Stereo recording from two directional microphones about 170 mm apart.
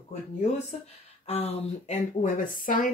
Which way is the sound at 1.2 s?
40° left (ahead or behind).